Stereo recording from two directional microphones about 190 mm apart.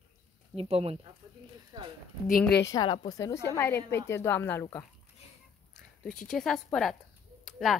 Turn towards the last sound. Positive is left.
turn(degrees=0)  # may be behind; listen again after turning